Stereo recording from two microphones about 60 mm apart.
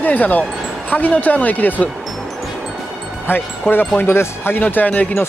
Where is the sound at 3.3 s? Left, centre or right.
Left.